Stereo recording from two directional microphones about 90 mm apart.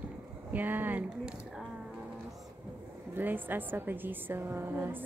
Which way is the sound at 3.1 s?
20° right (ahead or behind).